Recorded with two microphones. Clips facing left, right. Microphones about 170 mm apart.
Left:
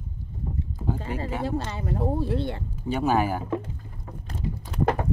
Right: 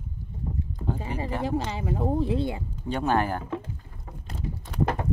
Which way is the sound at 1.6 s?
10° right (ahead or behind).